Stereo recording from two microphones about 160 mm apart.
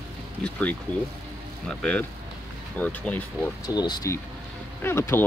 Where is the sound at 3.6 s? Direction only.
25° left (ahead or behind).